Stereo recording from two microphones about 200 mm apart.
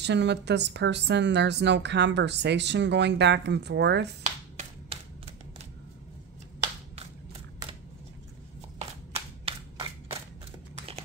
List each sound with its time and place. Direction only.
0.0 s speech: 60° right (ahead or behind)
4.6 s typewriter: 35° right (ahead or behind)
8.7 s a sound: 30° right (ahead or behind)